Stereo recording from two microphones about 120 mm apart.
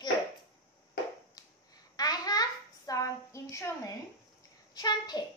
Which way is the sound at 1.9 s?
35° left (ahead or behind).